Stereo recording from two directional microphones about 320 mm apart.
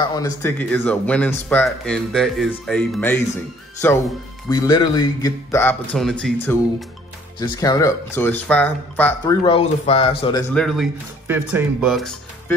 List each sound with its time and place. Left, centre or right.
0.1 s speech: centre
4.5 s speech: centre
10.5 s speech: centre